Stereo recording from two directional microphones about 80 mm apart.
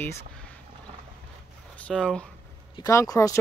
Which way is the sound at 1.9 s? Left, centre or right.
Centre.